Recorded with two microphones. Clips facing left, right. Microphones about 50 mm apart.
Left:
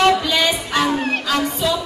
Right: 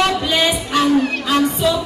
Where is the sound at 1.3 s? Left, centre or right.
Right.